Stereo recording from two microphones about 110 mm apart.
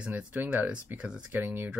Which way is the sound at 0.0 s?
10° right (ahead or behind).